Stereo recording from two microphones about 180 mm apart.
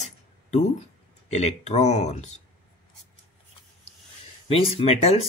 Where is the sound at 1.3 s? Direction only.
40° left (ahead or behind).